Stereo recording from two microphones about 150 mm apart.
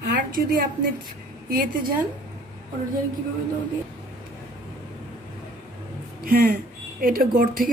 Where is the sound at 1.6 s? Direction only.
65° right (ahead or behind).